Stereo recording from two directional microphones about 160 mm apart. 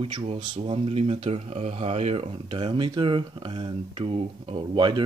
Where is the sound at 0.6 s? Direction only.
40° right (ahead or behind).